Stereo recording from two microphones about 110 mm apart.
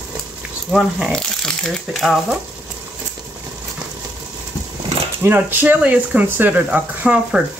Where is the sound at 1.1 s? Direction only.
5° left (ahead or behind).